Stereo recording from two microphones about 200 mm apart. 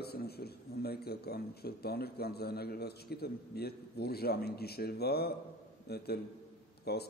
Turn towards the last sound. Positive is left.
turn(degrees=55)  # may be behind; listen again after turning